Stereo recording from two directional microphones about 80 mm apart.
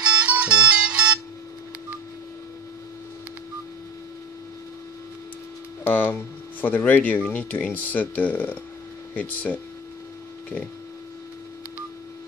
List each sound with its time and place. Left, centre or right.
0.0 s music: centre
5.9 s speech: left